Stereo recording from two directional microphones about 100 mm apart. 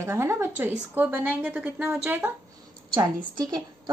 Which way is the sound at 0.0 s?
25° right (ahead or behind).